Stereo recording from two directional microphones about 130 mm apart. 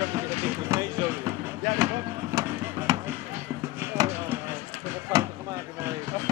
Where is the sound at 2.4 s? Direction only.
25° right (ahead or behind).